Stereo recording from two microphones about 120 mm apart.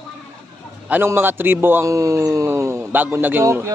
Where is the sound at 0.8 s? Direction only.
15° right (ahead or behind).